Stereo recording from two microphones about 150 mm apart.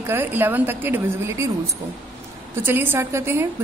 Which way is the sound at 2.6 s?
15° right (ahead or behind).